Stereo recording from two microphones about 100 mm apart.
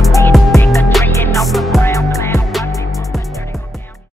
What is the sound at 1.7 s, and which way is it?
Music, 30° left (ahead or behind).